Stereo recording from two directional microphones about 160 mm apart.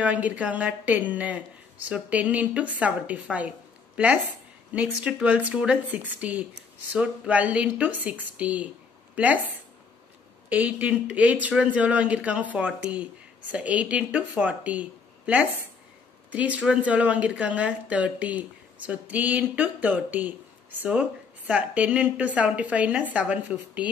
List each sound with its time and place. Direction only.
0.0 s speech: 10° right (ahead or behind)
10.5 s speech: 10° right (ahead or behind)